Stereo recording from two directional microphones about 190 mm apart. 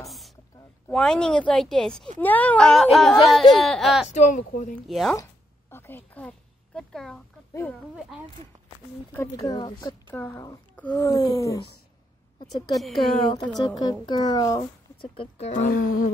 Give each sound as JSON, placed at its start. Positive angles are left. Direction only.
{"t": 0.0, "sound": "a sound", "side_deg": 0}
{"t": 0.8, "sound": "speech", "side_deg": 5}
{"t": 4.1, "sound": "speech", "side_deg": 40}
{"t": 4.7, "sound": "speech", "side_deg": 0}
{"t": 5.7, "sound": "a sound", "side_deg": 10}
{"t": 9.1, "sound": "speech", "side_deg": 15}
{"t": 10.1, "sound": "speech", "side_deg": 10}
{"t": 12.7, "sound": "speech", "side_deg": 0}
{"t": 13.6, "sound": "speech", "side_deg": 20}
{"t": 15.1, "sound": "speech", "side_deg": 35}